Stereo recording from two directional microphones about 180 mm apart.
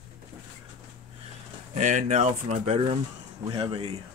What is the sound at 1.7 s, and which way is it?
Speech, 40° right (ahead or behind).